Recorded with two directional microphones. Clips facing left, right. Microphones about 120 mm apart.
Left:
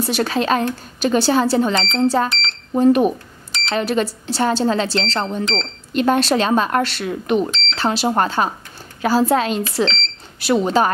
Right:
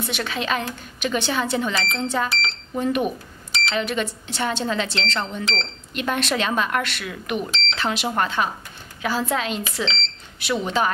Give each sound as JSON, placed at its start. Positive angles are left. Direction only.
{"t": 0.0, "sound": "speech", "side_deg": 35}